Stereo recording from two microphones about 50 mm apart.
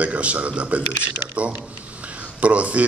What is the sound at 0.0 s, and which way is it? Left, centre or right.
Speech, right.